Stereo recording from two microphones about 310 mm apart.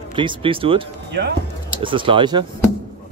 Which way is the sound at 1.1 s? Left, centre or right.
Right.